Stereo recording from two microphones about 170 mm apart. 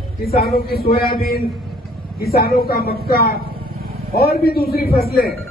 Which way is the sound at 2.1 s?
65° left (ahead or behind).